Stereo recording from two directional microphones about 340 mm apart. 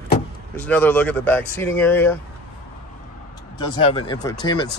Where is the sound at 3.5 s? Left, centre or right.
Centre.